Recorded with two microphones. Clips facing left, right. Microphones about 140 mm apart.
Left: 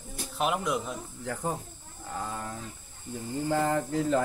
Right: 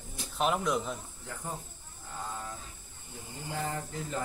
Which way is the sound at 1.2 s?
75° left (ahead or behind).